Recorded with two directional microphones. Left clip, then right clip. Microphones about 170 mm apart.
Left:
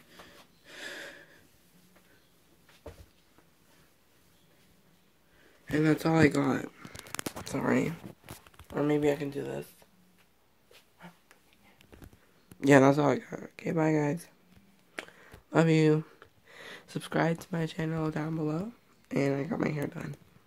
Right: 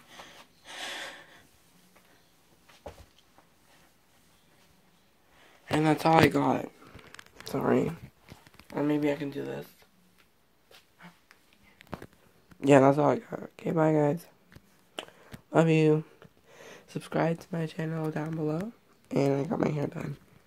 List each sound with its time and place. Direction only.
0.7 s a sound: 5° left (ahead or behind)
5.8 s speech: 15° left (ahead or behind)
7.4 s speech: 5° right (ahead or behind)
8.6 s speech: 25° left (ahead or behind)
11.8 s a sound: 15° right (ahead or behind)
12.5 s speech: 5° left (ahead or behind)
13.7 s speech: 10° right (ahead or behind)
15.0 s a sound: centre (ahead or behind)
16.0 s speech: 5° left (ahead or behind); by 20.1 s 15° right (ahead or behind)